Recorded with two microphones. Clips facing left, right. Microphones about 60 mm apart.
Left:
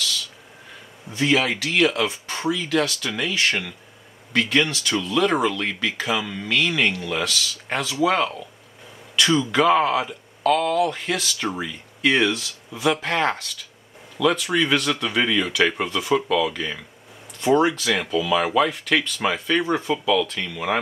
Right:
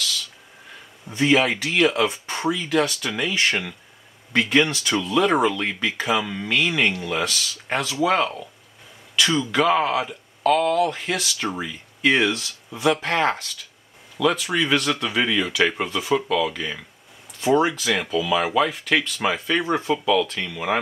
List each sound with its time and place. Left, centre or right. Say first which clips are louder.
1.1 s speech: right 2 dB; centre